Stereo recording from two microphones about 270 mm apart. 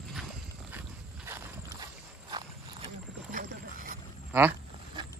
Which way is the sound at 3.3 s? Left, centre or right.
Right.